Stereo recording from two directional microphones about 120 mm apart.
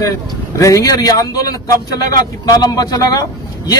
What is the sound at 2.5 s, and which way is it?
A man's voice, 30° left (ahead or behind).